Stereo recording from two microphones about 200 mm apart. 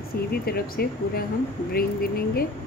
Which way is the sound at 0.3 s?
50° left (ahead or behind).